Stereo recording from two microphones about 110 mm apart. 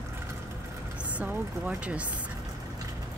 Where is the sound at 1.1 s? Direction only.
15° right (ahead or behind).